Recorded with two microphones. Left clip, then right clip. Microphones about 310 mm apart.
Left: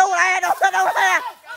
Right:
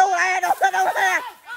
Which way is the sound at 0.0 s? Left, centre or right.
Left.